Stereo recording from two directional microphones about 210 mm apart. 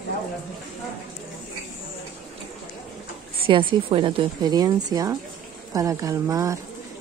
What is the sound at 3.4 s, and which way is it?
A woman's voice, 25° right (ahead or behind).